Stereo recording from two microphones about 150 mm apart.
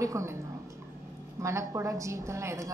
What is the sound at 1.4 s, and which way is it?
A woman's voice, 20° right (ahead or behind).